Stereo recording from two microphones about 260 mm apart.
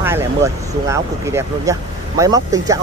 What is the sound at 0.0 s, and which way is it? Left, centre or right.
Speech, centre.